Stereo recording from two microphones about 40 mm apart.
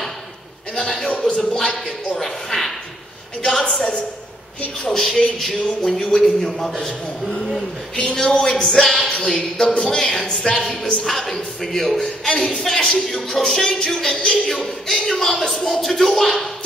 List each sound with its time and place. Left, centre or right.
1.0 s a sound: left
2.1 s a sound: centre
3.4 s speech: left
4.7 s speech: centre
7.9 s speech: left
8.2 s speech: centre
12.0 s speech: centre
14.5 s speech: centre